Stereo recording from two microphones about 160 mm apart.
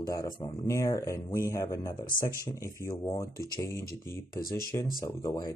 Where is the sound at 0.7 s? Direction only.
20° left (ahead or behind).